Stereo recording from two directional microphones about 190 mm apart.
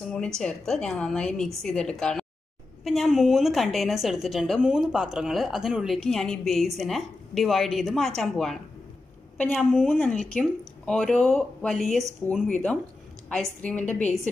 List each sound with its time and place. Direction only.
0.1 s a woman's voice: 5° left (ahead or behind)